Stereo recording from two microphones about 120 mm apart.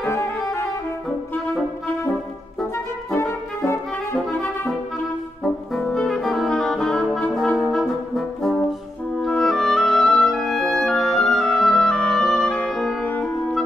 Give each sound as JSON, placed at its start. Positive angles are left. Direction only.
{"t": 0.1, "sound": "music", "side_deg": 20}
{"t": 3.1, "sound": "brass instrument", "side_deg": 25}
{"t": 5.4, "sound": "brass instrument", "side_deg": 10}
{"t": 9.2, "sound": "clarinet", "side_deg": 5}